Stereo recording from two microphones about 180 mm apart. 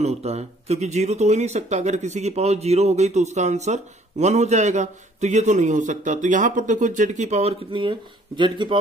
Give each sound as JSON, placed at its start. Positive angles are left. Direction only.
{"t": 0.0, "sound": "speech", "side_deg": -35}